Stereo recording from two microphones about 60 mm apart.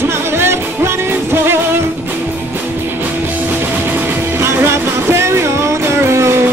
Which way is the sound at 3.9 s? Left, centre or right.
Right.